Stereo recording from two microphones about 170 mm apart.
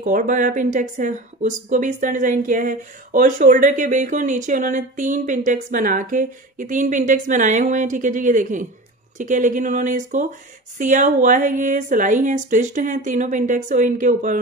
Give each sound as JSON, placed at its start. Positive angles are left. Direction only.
{"t": 0.0, "sound": "speech", "side_deg": -50}